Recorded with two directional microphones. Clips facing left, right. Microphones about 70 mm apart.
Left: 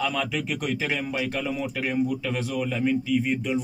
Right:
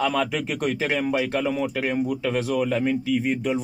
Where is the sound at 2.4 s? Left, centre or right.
Right.